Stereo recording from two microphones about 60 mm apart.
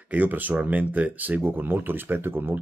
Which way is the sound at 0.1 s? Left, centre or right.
Right.